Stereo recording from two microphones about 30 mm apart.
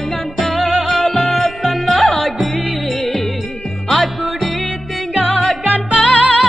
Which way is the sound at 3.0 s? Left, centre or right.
Centre.